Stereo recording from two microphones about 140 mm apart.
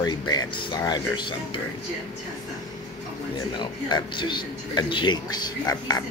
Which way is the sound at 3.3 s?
30° left (ahead or behind).